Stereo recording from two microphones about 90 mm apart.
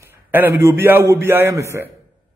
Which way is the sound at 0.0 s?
25° right (ahead or behind).